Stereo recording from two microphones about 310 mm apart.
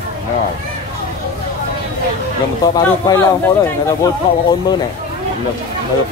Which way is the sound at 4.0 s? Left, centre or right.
Centre.